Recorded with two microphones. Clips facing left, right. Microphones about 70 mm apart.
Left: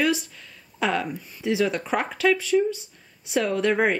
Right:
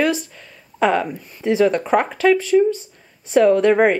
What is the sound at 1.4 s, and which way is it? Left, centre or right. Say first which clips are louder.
Speech: right 7 dB; right.